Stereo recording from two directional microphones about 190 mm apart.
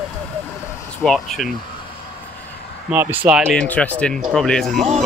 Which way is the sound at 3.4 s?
5° left (ahead or behind).